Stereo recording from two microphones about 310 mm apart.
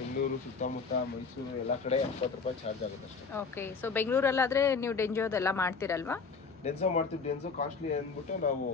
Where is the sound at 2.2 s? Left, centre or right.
Centre.